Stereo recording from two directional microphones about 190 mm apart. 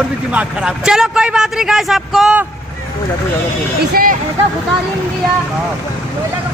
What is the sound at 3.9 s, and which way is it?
Speech, 50° right (ahead or behind).